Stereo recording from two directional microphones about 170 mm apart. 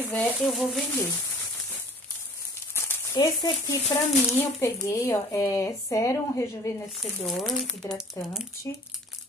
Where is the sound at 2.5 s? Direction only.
15° left (ahead or behind).